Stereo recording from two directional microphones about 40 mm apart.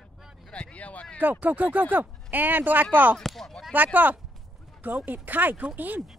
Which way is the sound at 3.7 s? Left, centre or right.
Right.